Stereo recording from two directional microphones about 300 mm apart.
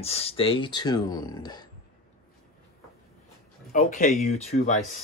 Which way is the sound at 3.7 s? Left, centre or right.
Left.